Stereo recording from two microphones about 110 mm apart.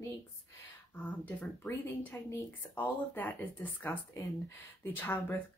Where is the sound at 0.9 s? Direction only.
15° left (ahead or behind).